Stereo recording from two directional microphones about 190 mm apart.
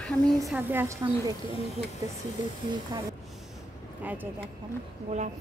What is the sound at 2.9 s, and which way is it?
Speech, 20° right (ahead or behind).